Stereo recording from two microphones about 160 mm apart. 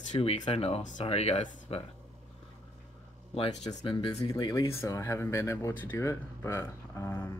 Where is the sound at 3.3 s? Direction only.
40° left (ahead or behind).